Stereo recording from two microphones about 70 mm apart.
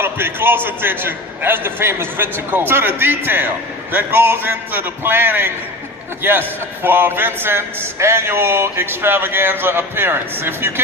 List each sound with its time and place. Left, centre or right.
0.0 s a man's voice: right